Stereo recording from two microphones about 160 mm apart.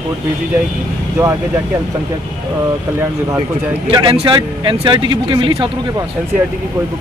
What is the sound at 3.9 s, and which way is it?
Speech, 30° right (ahead or behind).